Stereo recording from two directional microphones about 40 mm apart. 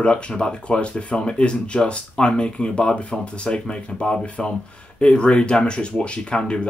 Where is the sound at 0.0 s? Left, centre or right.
Left.